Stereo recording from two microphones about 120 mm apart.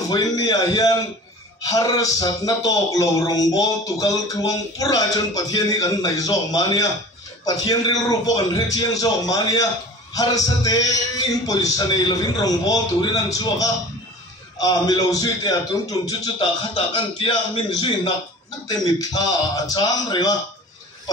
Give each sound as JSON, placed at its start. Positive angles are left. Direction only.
{"t": 0.1, "sound": "a man's voice", "side_deg": 30}
{"t": 16.7, "sound": "speech", "side_deg": 50}
{"t": 17.7, "sound": "a man's voice", "side_deg": 35}